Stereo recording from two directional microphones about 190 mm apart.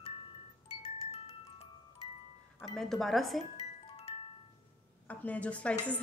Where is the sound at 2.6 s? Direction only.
Centre (ahead or behind).